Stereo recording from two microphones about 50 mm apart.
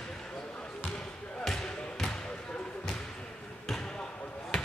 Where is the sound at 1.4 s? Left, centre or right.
Centre.